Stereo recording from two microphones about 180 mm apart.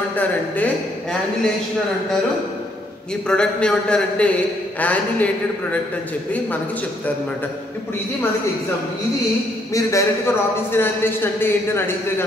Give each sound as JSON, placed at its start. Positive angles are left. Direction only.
{"t": 3.3, "sound": "a man's voice", "side_deg": 5}
{"t": 9.8, "sound": "a man's voice", "side_deg": 15}